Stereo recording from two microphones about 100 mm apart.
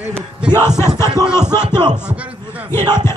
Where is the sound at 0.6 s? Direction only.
25° left (ahead or behind).